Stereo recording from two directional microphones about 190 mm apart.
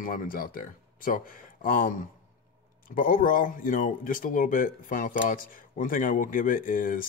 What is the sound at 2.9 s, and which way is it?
Speech, 45° left (ahead or behind).